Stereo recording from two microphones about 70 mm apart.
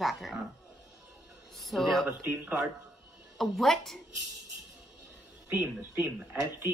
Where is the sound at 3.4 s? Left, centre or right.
Centre.